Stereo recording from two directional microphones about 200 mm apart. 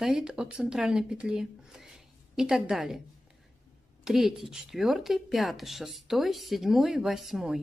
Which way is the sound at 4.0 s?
Centre (ahead or behind).